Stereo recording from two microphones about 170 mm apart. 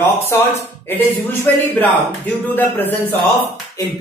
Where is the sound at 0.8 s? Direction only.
15° left (ahead or behind).